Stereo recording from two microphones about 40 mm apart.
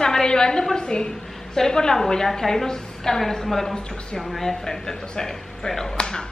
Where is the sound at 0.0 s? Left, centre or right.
Centre.